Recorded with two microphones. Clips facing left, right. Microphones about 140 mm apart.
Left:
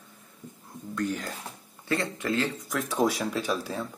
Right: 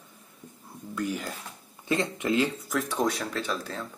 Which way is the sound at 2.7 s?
Centre (ahead or behind).